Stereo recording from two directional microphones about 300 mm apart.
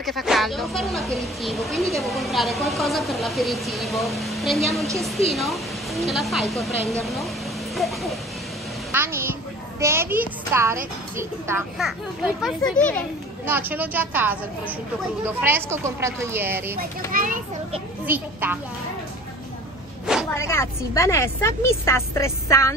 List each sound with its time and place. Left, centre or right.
0.0 s a child's voice: centre
13.5 s speech: centre
17.1 s a child's voice: right
18.0 s speech: centre
20.3 s a woman's voice: centre